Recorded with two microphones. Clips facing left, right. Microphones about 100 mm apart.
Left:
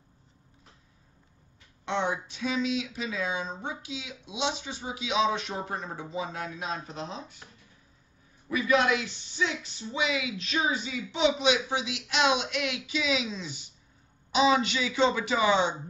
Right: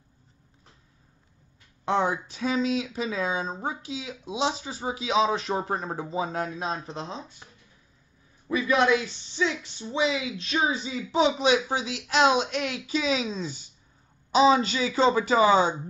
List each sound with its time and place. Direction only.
1.9 s speech: 40° right (ahead or behind)
8.5 s speech: 25° right (ahead or behind)